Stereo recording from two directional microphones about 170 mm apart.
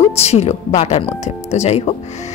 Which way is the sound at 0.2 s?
40° left (ahead or behind).